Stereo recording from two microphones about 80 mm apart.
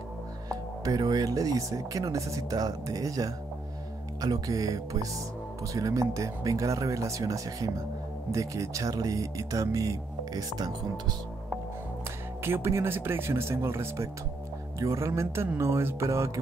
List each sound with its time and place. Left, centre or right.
0.5 s speech: right
12.4 s speech: right